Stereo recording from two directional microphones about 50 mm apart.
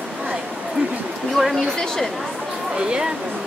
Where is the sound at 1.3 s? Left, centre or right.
Centre.